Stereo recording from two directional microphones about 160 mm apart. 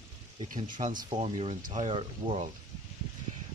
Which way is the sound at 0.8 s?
35° right (ahead or behind).